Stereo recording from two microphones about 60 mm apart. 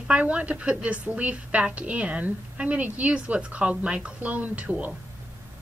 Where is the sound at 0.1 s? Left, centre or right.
Right.